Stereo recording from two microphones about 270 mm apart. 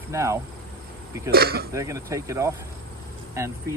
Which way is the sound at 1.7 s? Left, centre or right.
Centre.